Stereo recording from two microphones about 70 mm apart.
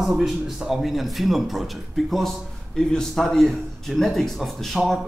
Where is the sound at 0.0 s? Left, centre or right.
Centre.